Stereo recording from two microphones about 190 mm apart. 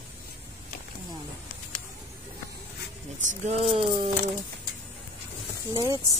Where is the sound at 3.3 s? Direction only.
35° right (ahead or behind).